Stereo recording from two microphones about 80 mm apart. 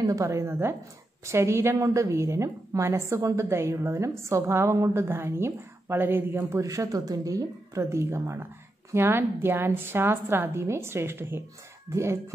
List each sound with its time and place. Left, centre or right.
0.0 s a woman's voice: right
6.6 s a woman's voice: right